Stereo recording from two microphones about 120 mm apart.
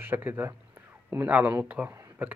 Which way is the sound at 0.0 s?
15° right (ahead or behind).